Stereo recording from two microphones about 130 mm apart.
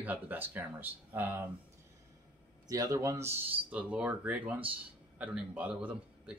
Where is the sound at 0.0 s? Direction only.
15° right (ahead or behind).